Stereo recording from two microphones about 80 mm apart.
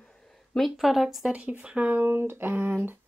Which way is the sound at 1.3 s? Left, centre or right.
Centre.